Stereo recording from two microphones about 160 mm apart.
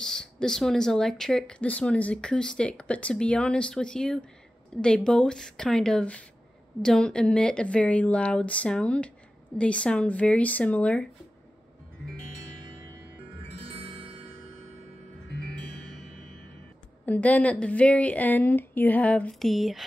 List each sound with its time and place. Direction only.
0.0 s a woman's voice: 5° left (ahead or behind)
13.7 s music: 35° right (ahead or behind)
17.0 s a woman's voice: 10° left (ahead or behind)